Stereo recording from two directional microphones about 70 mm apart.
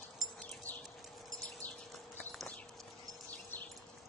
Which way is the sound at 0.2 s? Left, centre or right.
Centre.